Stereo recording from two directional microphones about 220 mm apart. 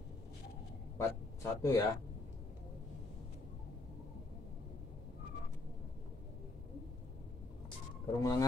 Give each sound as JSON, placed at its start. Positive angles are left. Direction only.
{"t": 0.9, "sound": "speech", "side_deg": 15}
{"t": 8.2, "sound": "speech", "side_deg": 15}